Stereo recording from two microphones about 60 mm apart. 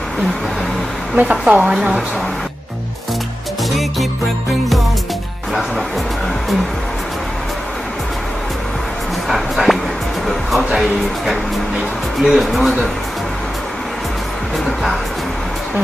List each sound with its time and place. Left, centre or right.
1.2 s speech: centre
9.3 s a sound: centre
10.2 s speech: centre